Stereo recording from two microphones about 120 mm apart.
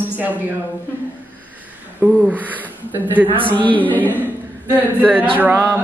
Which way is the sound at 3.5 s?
15° left (ahead or behind).